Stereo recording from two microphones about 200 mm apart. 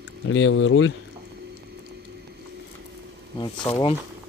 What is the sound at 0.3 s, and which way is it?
Speech, 75° left (ahead or behind).